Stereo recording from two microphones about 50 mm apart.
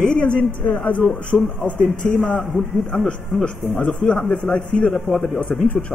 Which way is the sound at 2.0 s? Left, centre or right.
Centre.